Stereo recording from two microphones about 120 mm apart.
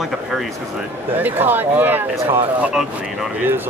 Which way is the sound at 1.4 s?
15° right (ahead or behind).